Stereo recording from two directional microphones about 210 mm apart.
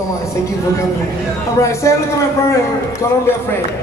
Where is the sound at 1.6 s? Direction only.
15° left (ahead or behind).